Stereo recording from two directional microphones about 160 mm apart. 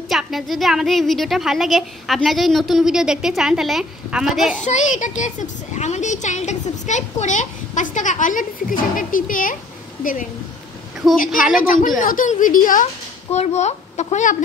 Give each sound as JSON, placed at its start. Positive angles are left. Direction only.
{"t": 0.1, "sound": "a woman's voice", "side_deg": 0}
{"t": 4.6, "sound": "speech", "side_deg": 50}
{"t": 11.0, "sound": "a woman's voice", "side_deg": 0}
{"t": 11.6, "sound": "a woman's voice", "side_deg": 60}
{"t": 13.3, "sound": "speech", "side_deg": 45}